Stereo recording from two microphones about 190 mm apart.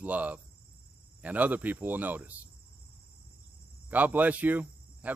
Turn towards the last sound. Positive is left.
turn(degrees=-10)  # may be behind; listen again after turning